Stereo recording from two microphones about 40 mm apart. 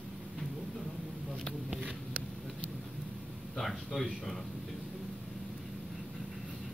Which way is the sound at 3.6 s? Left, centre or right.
Centre.